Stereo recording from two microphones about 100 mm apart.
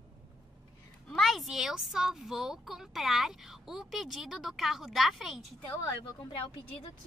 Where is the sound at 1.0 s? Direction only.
Centre (ahead or behind).